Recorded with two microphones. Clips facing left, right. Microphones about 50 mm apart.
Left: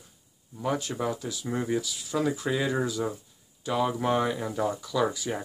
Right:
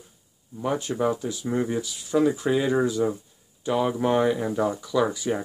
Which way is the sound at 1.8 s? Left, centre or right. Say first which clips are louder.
Right 6 dB; right.